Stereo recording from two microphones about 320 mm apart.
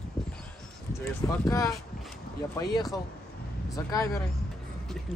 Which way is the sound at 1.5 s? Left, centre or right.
Centre.